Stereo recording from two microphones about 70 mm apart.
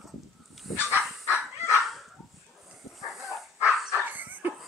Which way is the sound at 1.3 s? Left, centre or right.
Left.